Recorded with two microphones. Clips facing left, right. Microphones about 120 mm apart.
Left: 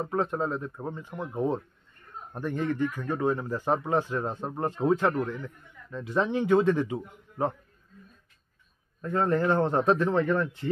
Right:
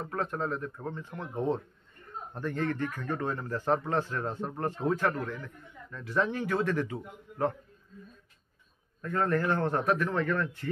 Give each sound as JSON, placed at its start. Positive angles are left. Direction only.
{"t": 0.0, "sound": "a man's voice", "side_deg": 20}
{"t": 9.0, "sound": "a man's voice", "side_deg": 20}